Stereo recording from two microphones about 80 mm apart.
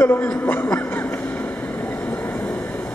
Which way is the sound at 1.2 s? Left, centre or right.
Left.